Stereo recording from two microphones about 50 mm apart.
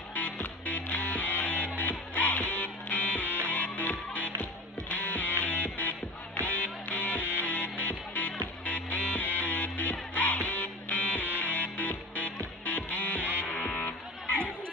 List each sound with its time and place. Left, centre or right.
0.1 s music: left